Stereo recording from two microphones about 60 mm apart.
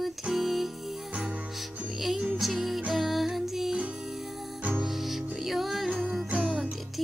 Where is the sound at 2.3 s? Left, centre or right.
Centre.